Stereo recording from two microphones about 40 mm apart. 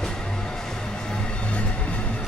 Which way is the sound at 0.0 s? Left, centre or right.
Centre.